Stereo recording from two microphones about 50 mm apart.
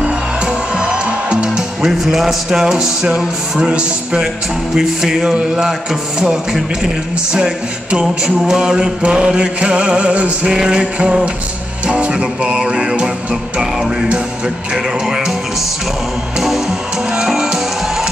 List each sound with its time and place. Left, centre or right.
0.0 s music: centre
4.7 s speech: centre
7.3 s chant: centre
11.9 s music: right
14.7 s speech: centre
16.3 s music: centre